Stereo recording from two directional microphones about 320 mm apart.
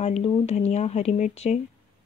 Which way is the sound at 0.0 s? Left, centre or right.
Centre.